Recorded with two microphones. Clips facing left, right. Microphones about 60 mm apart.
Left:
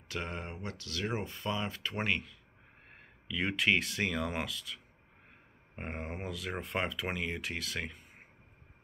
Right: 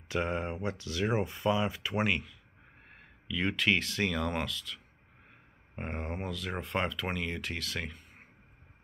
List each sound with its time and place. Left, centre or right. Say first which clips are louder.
0.1 s speech: right 7 dB; right; by 2.3 s centre
2.9 s speech: right 2 dB; centre